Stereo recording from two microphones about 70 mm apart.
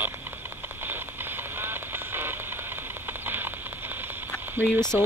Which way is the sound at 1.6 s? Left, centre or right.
Right.